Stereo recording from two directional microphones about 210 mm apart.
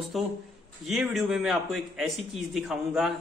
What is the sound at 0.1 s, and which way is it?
A man's voice, centre (ahead or behind).